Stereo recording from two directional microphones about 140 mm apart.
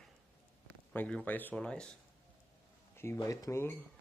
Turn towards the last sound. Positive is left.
turn(degrees=20)  # may be behind; listen again after turning